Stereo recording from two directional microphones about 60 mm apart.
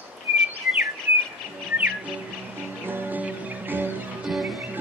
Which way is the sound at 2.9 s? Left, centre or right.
Right.